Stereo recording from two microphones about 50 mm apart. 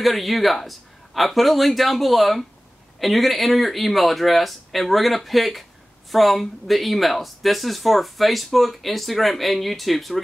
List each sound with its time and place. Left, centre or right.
0.0 s speech: centre